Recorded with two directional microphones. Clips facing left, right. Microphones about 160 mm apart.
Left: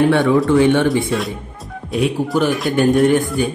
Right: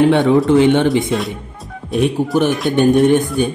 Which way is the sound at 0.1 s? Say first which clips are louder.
Right 2 dB; 20° right (ahead or behind).